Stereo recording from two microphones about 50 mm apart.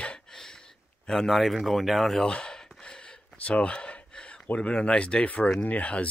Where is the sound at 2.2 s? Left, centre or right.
Centre.